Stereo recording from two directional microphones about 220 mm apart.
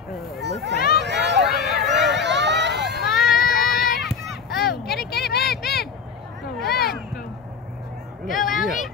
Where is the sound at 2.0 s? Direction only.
50° right (ahead or behind).